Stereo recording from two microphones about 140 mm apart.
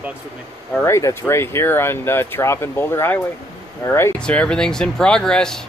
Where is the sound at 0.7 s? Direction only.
20° left (ahead or behind).